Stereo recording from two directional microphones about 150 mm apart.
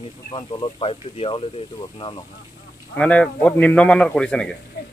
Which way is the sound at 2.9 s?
10° left (ahead or behind).